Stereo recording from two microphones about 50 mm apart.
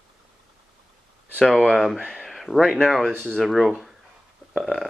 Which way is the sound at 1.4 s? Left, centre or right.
Centre.